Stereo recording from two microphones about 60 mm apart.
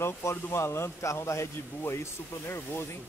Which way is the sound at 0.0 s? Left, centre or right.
Left.